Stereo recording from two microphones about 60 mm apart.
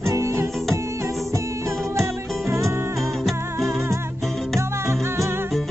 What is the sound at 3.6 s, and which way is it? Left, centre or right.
Music, right.